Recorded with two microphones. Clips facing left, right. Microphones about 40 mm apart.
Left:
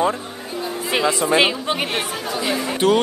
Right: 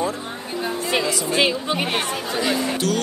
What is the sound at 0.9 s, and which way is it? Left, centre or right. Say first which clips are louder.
Speech: left 5 dB; centre.